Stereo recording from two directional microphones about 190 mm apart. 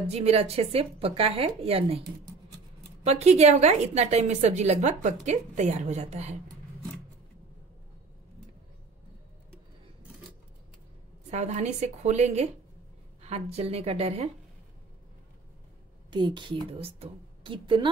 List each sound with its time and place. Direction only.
0.1 s a woman's voice: 35° right (ahead or behind)
3.1 s a woman's voice: 35° right (ahead or behind)
11.2 s a woman's voice: 35° right (ahead or behind)
16.1 s a woman's voice: 25° right (ahead or behind)